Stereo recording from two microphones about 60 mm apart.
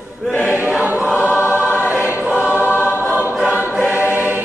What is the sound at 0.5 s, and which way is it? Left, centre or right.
Choir, right.